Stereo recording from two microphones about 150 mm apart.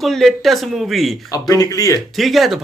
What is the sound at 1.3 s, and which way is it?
Speech, 25° left (ahead or behind).